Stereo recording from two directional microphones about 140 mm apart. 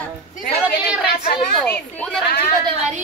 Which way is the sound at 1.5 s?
5° left (ahead or behind).